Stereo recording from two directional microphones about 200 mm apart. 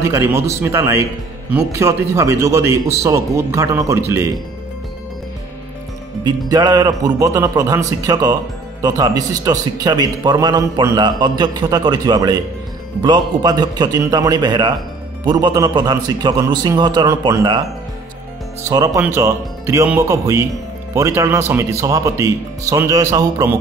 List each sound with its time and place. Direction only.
0.0 s a man's voice: 15° right (ahead or behind)
6.2 s a man's voice: 20° right (ahead or behind)
18.6 s a man's voice: 15° right (ahead or behind)